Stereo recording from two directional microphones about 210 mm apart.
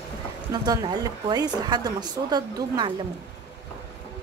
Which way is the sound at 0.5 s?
20° right (ahead or behind).